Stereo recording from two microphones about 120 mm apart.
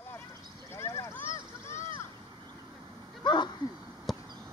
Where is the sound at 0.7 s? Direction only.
25° left (ahead or behind).